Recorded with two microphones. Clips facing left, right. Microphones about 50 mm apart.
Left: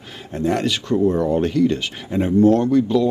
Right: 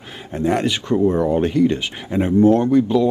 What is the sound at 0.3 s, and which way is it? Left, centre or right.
Speech, right.